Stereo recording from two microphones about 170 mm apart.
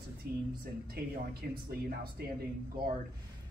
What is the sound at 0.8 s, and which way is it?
Speech, 60° right (ahead or behind).